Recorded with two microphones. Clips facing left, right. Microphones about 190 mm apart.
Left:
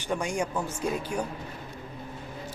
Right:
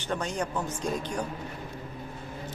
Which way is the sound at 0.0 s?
10° left (ahead or behind).